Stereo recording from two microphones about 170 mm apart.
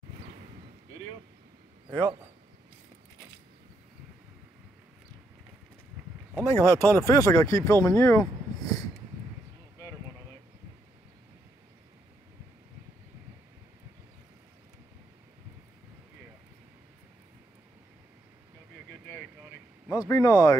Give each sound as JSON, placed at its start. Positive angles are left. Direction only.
{"t": 6.3, "sound": "speech", "side_deg": 15}
{"t": 19.9, "sound": "speech", "side_deg": 20}